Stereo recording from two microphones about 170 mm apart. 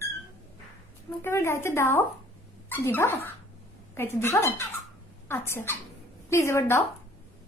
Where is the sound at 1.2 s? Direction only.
15° left (ahead or behind).